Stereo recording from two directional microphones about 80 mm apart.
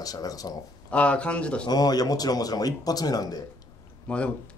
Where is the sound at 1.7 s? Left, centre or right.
Left.